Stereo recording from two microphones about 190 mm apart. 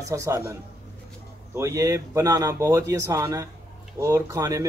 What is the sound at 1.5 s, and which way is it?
Speech, 15° right (ahead or behind).